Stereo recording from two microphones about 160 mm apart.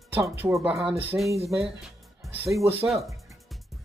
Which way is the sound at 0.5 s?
Centre (ahead or behind).